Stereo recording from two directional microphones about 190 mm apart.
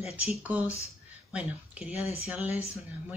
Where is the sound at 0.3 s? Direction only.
5° right (ahead or behind).